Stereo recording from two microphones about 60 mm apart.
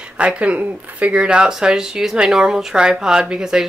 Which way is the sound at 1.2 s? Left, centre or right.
Centre.